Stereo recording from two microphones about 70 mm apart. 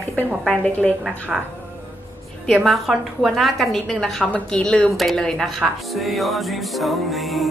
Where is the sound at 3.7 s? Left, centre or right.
Centre.